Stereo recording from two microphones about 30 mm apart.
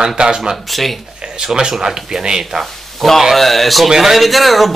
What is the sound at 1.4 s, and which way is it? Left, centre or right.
A man's voice, right.